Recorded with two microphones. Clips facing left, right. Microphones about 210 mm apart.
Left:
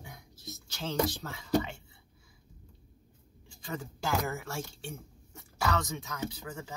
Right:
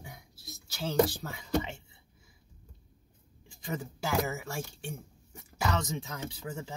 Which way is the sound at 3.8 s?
10° right (ahead or behind).